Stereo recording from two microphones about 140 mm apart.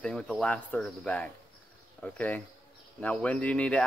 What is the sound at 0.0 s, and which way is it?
Speech, 5° left (ahead or behind).